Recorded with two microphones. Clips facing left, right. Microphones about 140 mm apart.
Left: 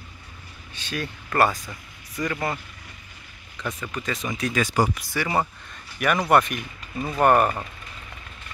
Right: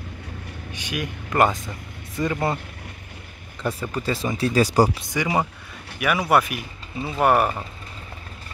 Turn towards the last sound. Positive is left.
turn(degrees=-5)  # may be behind; listen again after turning